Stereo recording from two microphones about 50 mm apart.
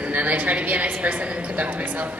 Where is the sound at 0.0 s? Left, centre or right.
Right.